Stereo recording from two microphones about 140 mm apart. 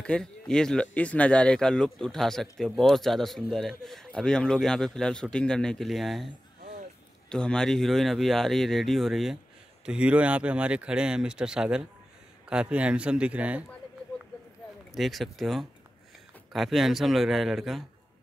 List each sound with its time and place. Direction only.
0.0 s speech: 5° left (ahead or behind)
7.2 s speech: 5° left (ahead or behind)
14.9 s speech: centre (ahead or behind)